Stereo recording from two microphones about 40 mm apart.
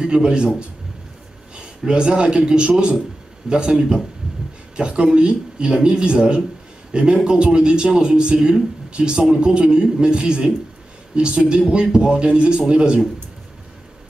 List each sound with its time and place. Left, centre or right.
0.0 s a man's voice: right
4.7 s speech: right